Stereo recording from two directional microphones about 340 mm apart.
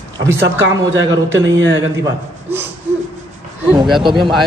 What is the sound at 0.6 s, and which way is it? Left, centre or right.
Speech, right.